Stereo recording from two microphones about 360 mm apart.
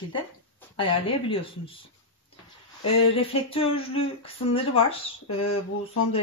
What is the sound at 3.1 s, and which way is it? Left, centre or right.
Speech, centre.